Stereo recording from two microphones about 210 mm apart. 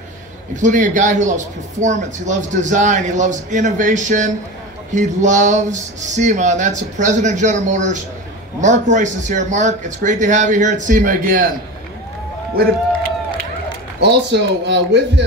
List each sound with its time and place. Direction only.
0.6 s speech: 35° right (ahead or behind)
14.0 s speech: 55° right (ahead or behind)